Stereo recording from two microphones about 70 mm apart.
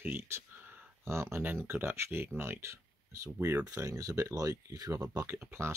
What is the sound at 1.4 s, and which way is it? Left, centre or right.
Speech, right.